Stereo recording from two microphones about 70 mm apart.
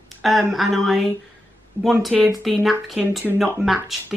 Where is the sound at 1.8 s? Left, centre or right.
Right.